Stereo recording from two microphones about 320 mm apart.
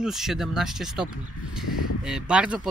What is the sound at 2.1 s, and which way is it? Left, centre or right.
Speech, centre.